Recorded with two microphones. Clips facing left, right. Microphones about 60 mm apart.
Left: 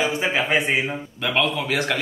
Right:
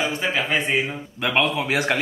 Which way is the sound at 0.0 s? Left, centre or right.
Centre.